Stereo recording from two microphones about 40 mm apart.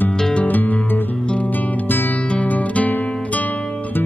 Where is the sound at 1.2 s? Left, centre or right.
Left.